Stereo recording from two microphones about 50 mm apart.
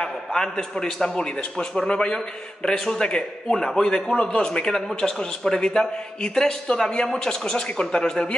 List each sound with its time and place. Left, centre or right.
0.0 s a man's voice: centre